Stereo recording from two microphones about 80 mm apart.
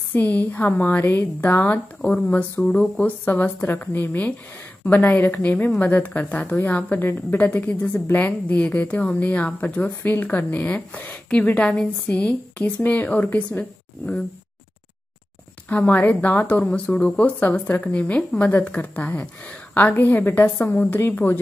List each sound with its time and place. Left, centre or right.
0.1 s a woman's voice: left
15.9 s a woman's voice: left